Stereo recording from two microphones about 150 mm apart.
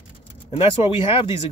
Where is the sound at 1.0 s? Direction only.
35° left (ahead or behind).